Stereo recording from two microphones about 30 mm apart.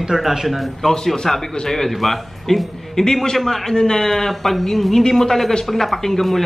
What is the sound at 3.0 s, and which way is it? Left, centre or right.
A man's voice, centre.